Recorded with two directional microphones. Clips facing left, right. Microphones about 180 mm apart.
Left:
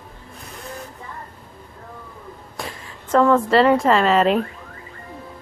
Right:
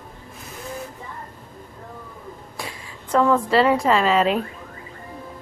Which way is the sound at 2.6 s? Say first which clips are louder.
Left 4 dB; centre (ahead or behind).